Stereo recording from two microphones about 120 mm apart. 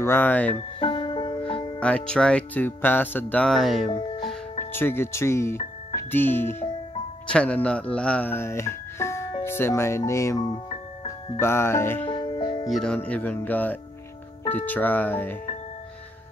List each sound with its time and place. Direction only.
0.0 s speech: 15° left (ahead or behind)
0.7 s music: 45° left (ahead or behind)
1.8 s speech: 10° left (ahead or behind)
3.4 s speech: centre (ahead or behind)
4.7 s speech: 20° left (ahead or behind)
11.3 s speech: 20° left (ahead or behind)
12.2 s music: 40° left (ahead or behind)
12.6 s speech: 5° left (ahead or behind)